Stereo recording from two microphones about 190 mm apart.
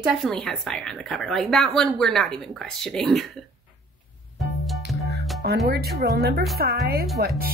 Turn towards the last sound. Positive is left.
turn(degrees=-55)  # may be behind; listen again after turning